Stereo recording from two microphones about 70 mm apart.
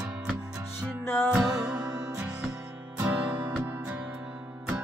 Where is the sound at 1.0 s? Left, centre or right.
Left.